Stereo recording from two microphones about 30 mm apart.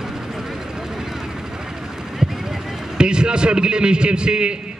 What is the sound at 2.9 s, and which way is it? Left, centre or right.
A man's voice, right.